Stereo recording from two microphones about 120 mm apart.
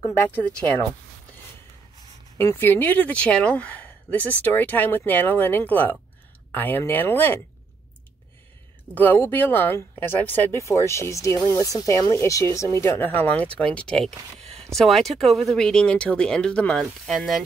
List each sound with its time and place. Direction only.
0.0 s speech: 20° left (ahead or behind)
0.4 s speech: 10° left (ahead or behind)
2.3 s speech: 20° left (ahead or behind)
8.9 s speech: 15° left (ahead or behind)